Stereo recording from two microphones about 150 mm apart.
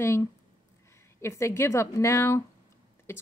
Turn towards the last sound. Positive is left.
turn(degrees=15)  # may be behind; listen again after turning